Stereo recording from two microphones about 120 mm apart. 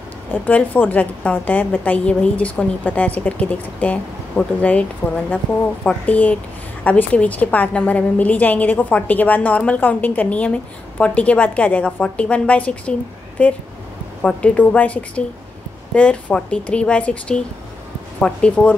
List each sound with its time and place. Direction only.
0.3 s a woman's voice: 15° left (ahead or behind)